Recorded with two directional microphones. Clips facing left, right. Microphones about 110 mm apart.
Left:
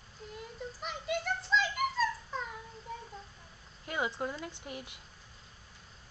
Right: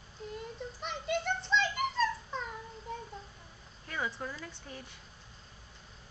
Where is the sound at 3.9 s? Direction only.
20° left (ahead or behind).